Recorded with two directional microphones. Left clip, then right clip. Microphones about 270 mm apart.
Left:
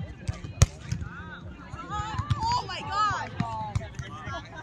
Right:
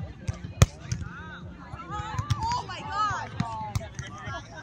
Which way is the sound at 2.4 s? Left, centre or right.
Left.